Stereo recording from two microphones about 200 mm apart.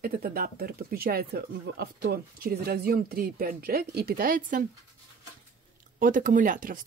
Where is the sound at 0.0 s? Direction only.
50° right (ahead or behind).